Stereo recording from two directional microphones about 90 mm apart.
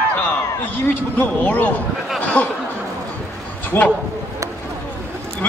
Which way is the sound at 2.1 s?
15° left (ahead or behind).